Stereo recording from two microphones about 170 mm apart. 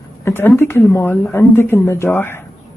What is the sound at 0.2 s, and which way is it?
A woman's voice, 10° left (ahead or behind).